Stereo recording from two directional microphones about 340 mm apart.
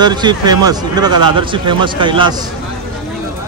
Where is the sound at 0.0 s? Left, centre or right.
Centre.